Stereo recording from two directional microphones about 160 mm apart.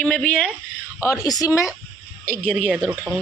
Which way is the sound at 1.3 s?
20° left (ahead or behind).